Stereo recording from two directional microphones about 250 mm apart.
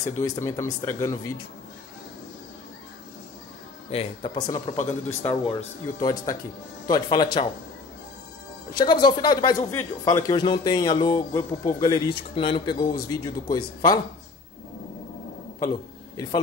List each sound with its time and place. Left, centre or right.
0.0 s speech: centre
3.9 s speech: left
8.7 s speech: centre